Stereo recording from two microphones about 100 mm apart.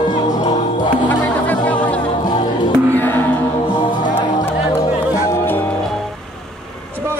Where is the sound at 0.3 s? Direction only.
45° left (ahead or behind).